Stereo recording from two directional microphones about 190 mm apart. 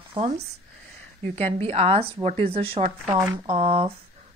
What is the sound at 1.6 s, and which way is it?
A woman's voice, 30° right (ahead or behind).